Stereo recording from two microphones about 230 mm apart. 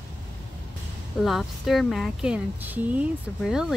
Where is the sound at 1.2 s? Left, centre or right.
Centre.